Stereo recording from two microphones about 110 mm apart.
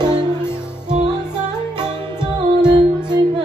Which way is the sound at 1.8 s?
40° right (ahead or behind).